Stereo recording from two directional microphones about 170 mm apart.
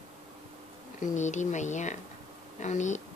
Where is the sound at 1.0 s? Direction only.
45° left (ahead or behind).